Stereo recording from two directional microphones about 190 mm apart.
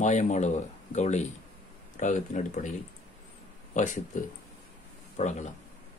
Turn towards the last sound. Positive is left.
turn(degrees=40)  # may be behind; listen again after turning